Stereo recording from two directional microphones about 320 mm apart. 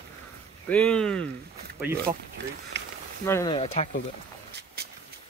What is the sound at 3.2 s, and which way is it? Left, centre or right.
Speech, centre.